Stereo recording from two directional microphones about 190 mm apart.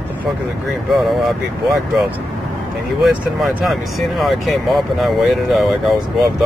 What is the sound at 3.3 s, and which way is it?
Speech, centre (ahead or behind).